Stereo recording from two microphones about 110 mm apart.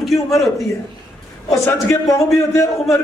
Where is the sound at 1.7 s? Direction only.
25° left (ahead or behind).